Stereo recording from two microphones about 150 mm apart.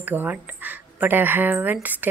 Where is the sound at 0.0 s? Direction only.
10° right (ahead or behind).